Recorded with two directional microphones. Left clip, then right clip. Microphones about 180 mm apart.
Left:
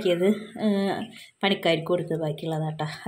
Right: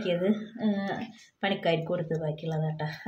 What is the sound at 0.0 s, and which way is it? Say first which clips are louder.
Speech: left 5 dB; 45° left (ahead or behind).